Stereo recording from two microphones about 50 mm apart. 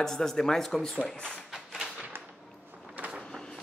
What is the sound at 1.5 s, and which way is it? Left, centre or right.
Thump, centre.